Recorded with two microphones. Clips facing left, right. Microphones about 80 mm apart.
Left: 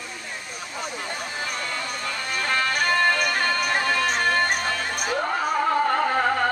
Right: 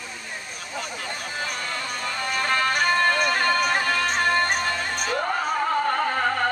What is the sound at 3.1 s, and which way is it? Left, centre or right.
Music, centre.